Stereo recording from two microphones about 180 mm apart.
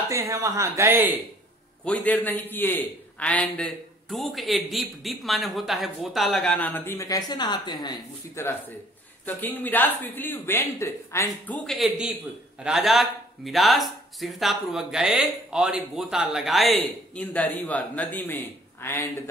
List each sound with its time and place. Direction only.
0.1 s speech: 20° right (ahead or behind)
1.9 s speech: 10° left (ahead or behind); by 7.9 s 25° left (ahead or behind)
8.4 s speech: 15° left (ahead or behind)